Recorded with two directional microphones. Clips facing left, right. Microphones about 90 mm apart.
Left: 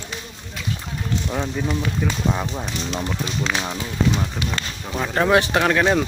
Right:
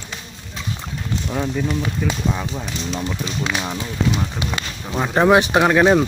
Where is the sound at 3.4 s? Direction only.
5° right (ahead or behind).